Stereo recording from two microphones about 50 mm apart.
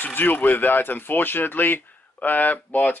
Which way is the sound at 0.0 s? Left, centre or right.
Left.